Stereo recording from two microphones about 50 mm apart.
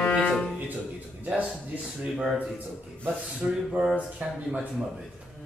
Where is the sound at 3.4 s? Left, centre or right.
Right.